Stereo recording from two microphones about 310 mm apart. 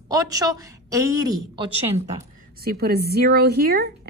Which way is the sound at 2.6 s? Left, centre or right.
Right.